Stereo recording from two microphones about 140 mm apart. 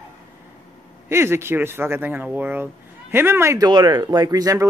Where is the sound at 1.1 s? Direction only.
20° right (ahead or behind).